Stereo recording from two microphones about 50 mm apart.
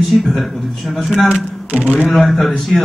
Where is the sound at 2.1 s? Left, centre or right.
Centre.